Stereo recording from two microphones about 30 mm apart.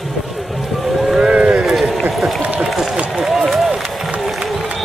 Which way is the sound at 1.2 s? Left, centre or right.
Right.